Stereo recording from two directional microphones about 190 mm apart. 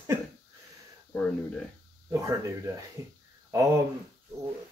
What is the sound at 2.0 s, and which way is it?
Speech, 15° right (ahead or behind).